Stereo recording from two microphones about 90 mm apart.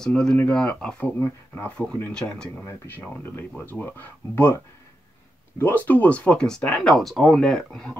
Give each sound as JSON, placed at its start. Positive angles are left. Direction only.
{"t": 0.0, "sound": "speech", "side_deg": 10}
{"t": 2.9, "sound": "speech", "side_deg": 25}
{"t": 5.6, "sound": "speech", "side_deg": 20}